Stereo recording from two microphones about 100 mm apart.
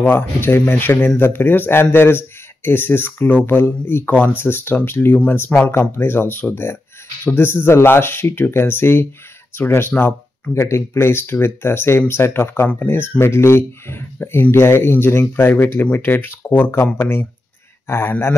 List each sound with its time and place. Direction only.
0.0 s speech: 20° left (ahead or behind)